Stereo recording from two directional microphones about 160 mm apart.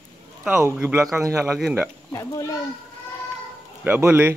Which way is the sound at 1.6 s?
Centre (ahead or behind).